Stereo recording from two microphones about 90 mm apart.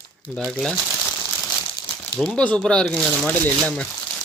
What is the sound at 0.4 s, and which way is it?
Speech, 5° left (ahead or behind).